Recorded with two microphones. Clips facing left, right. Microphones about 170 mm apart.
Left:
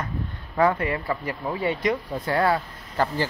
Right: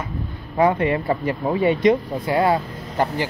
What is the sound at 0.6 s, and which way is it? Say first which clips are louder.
Speech: right 4 dB; 20° right (ahead or behind).